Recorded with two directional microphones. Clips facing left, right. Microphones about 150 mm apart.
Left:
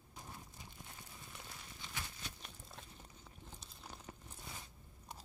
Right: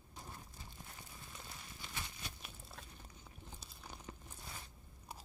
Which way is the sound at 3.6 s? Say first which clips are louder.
Right 1 dB; 5° right (ahead or behind).